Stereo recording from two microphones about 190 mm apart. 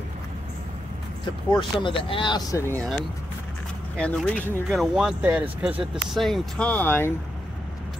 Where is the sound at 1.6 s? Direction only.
25° left (ahead or behind).